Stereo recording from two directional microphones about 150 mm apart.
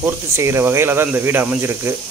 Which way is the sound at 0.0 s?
15° right (ahead or behind).